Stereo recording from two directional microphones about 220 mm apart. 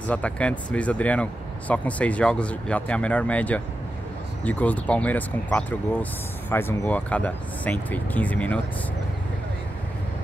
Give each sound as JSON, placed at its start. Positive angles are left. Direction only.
{"t": 0.0, "sound": "speech", "side_deg": 5}